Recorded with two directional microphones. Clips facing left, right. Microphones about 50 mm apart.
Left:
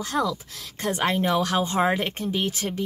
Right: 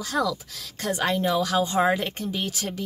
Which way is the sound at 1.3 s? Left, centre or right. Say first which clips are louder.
Even; left.